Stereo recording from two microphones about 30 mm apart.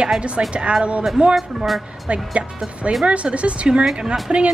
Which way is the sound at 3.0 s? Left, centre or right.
Right.